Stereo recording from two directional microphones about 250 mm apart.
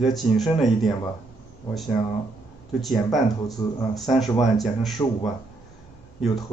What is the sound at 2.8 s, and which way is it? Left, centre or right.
Speech, centre.